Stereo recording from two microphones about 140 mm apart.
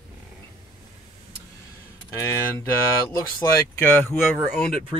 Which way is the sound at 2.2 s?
20° left (ahead or behind).